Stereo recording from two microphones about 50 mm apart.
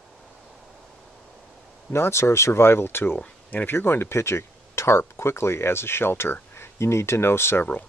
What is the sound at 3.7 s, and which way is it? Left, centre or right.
Speech, left.